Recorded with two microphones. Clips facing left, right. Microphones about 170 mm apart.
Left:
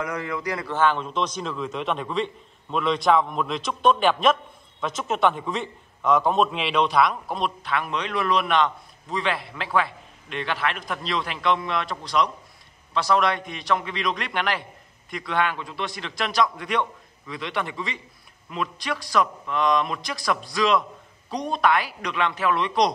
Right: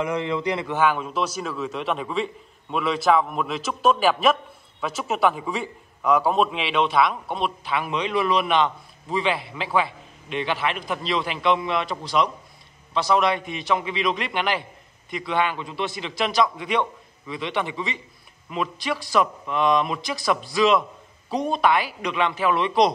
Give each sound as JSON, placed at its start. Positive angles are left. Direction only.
{"t": 0.0, "sound": "a man's voice", "side_deg": -25}
{"t": 0.7, "sound": "a man's voice", "side_deg": -10}